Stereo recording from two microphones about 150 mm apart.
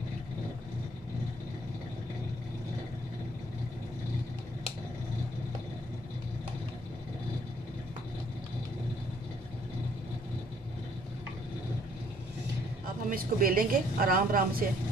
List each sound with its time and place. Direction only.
13.1 s a woman's voice: 70° right (ahead or behind)